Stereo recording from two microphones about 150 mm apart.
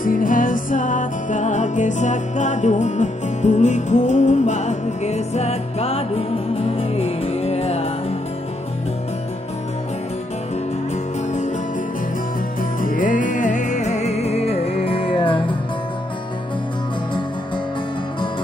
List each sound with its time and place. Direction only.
0.0 s music: 65° left (ahead or behind); by 8.2 s 40° left (ahead or behind)
12.8 s music: 65° left (ahead or behind); by 15.5 s 35° left (ahead or behind)